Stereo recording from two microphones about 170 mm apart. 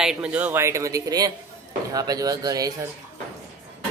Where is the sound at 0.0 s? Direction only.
5° right (ahead or behind); by 2.7 s 20° right (ahead or behind).